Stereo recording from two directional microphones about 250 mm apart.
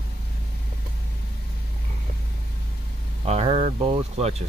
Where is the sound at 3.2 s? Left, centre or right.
Right.